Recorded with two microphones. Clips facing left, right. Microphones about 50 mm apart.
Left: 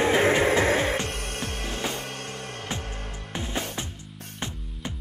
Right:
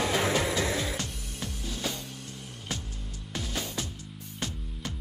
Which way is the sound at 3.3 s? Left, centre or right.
Left.